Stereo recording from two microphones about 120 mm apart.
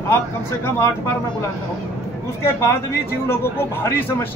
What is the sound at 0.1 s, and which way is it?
Speech, 20° left (ahead or behind).